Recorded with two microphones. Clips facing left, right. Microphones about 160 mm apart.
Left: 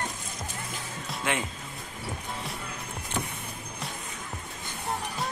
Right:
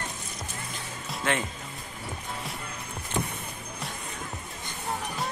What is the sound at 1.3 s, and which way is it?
Speech, 10° left (ahead or behind).